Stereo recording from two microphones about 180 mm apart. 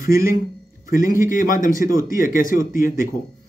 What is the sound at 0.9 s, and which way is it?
A man's voice, 50° left (ahead or behind).